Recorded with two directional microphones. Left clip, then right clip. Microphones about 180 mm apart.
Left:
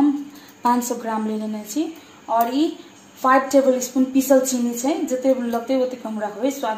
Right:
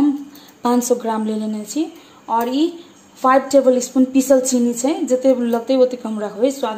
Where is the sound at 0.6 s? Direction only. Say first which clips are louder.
Right 3 dB; 65° right (ahead or behind).